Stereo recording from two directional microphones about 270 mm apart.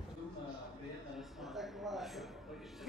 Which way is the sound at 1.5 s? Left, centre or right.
Centre.